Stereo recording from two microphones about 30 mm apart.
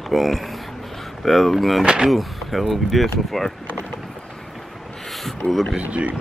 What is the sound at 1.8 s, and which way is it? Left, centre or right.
Speech, right.